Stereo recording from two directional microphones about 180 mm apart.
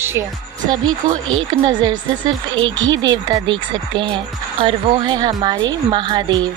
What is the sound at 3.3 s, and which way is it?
Speech, 25° right (ahead or behind).